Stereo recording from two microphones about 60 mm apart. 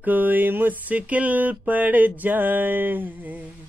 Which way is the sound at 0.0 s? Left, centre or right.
Right.